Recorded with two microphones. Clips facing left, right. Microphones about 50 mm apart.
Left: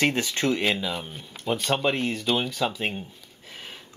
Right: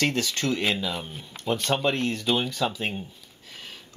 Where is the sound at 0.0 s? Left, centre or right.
Left.